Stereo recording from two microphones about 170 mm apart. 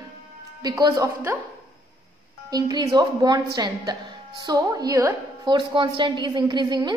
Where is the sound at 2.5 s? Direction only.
25° right (ahead or behind).